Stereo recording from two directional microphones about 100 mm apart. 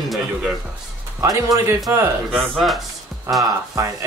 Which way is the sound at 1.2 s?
35° right (ahead or behind).